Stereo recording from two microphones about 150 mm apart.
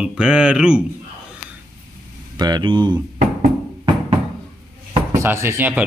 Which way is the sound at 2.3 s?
25° right (ahead or behind).